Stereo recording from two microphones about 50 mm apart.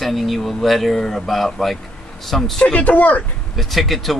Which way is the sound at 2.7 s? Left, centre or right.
Left.